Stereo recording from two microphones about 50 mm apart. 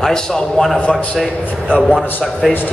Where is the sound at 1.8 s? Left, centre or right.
Centre.